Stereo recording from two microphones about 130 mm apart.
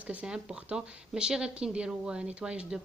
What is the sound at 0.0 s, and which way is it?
Speech, 10° right (ahead or behind).